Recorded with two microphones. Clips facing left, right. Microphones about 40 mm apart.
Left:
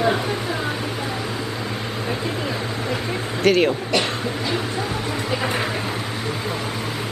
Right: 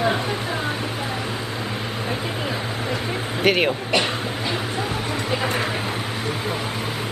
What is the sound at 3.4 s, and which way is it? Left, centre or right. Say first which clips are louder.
Speech: left 2 dB; centre.